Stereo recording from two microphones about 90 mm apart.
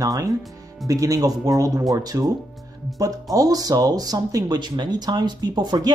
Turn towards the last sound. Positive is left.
turn(degrees=-50)  # may be behind; listen again after turning